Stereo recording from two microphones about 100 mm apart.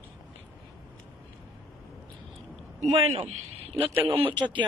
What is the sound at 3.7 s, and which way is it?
Speech, 65° right (ahead or behind).